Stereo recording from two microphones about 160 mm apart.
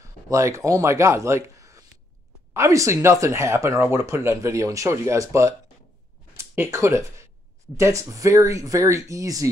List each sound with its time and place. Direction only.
0.0 s speech: 20° right (ahead or behind)